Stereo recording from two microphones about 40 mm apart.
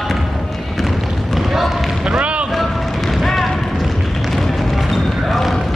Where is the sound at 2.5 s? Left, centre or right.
Centre.